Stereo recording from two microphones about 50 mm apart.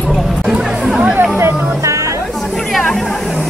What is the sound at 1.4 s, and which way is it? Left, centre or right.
Music, right.